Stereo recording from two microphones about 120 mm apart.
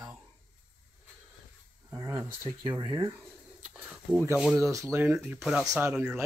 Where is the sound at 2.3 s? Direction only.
40° right (ahead or behind).